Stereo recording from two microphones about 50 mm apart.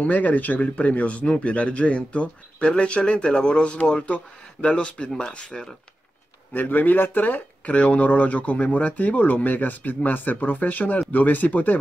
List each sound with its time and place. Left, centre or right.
0.0 s speech: left
6.5 s speech: left